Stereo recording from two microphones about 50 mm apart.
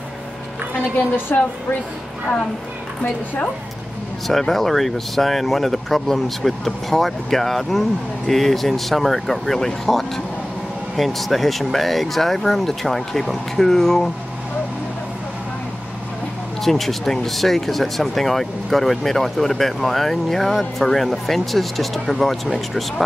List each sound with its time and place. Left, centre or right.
0.9 s a woman's voice: left
4.3 s speech: centre
16.6 s speech: centre